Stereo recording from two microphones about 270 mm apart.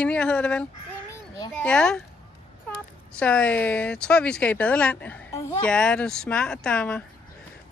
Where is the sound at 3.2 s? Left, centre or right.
Centre.